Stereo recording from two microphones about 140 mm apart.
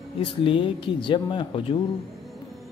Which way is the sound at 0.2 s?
40° left (ahead or behind).